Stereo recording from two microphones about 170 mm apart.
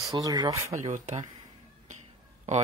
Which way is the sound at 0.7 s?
45° right (ahead or behind).